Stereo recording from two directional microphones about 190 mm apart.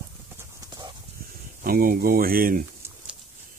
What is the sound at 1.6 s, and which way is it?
Speech, 50° right (ahead or behind).